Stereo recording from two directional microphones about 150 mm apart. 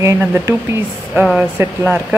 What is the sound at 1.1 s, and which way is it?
Speech, 5° right (ahead or behind).